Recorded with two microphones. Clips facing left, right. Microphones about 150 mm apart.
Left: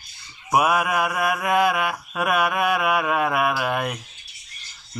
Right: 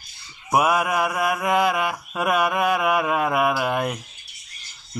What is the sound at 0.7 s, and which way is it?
Mantra, 15° right (ahead or behind).